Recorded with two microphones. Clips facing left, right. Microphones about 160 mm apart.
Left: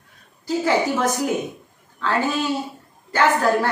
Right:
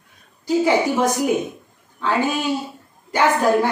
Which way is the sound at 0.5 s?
15° right (ahead or behind).